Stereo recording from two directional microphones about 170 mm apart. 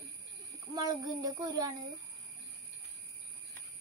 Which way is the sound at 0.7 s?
20° right (ahead or behind).